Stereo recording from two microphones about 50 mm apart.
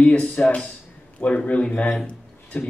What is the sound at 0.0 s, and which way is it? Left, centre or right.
Speech, left.